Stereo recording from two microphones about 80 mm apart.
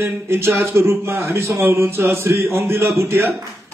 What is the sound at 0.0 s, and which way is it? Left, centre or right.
A man's voice, right.